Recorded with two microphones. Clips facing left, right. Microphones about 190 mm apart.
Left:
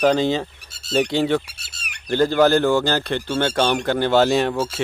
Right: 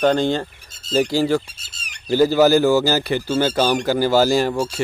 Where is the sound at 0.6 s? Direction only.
70° left (ahead or behind).